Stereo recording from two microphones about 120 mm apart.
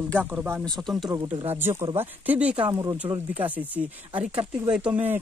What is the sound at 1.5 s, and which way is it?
Speech, 20° right (ahead or behind).